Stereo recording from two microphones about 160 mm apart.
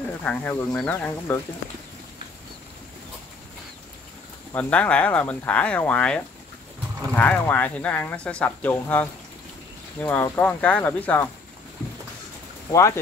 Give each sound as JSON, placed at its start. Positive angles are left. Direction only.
{"t": 0.2, "sound": "speech", "side_deg": 10}
{"t": 4.5, "sound": "speech", "side_deg": 10}
{"t": 12.7, "sound": "speech", "side_deg": 20}